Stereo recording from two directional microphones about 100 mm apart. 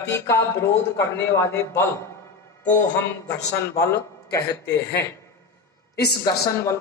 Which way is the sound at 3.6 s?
30° left (ahead or behind).